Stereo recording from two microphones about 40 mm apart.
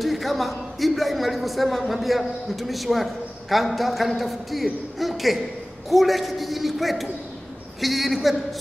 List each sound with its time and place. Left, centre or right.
0.0 s a man's voice: centre